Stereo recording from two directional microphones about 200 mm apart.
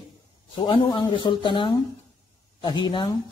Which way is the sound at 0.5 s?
25° left (ahead or behind).